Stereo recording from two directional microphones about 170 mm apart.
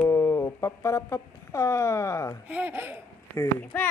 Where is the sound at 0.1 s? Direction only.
15° left (ahead or behind).